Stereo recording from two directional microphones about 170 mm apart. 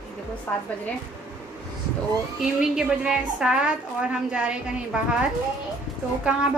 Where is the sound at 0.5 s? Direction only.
10° left (ahead or behind).